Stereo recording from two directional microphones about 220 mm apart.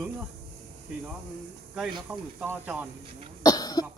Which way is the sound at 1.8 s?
5° right (ahead or behind).